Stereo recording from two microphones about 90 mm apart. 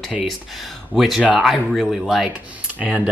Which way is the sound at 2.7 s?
15° right (ahead or behind).